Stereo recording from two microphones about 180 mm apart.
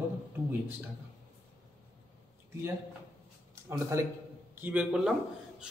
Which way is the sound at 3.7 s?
15° right (ahead or behind).